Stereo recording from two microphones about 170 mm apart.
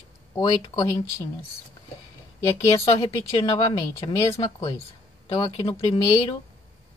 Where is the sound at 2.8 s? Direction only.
35° left (ahead or behind).